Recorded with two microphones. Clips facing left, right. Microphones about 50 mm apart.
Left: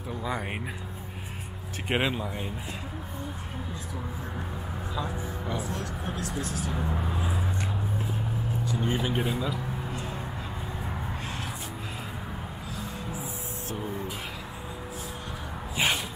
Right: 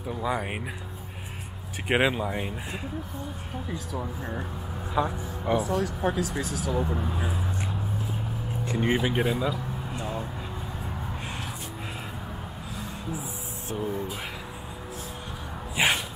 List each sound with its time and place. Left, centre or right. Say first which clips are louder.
0.1 s speech: right 3 dB; centre
1.9 s speech: right 4 dB; centre
5.0 s speech: right 8 dB; right
5.6 s speech: right 7 dB; centre
8.7 s speech: right 5 dB; right
9.0 s speech: right 3 dB; centre
9.5 s a sound: right 1 dB; centre
13.7 s speech: right 5 dB; centre
15.7 s a sound: right 3 dB; centre